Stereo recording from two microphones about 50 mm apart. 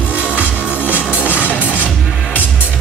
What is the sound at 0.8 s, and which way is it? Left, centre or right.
Music, left.